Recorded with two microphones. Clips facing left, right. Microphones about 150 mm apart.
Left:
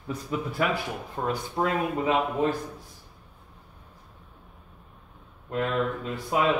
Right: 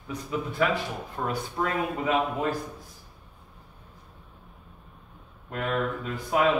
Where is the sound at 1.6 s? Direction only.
35° left (ahead or behind).